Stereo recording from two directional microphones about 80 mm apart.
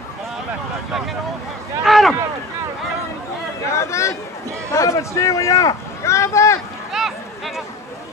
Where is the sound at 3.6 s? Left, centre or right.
Left.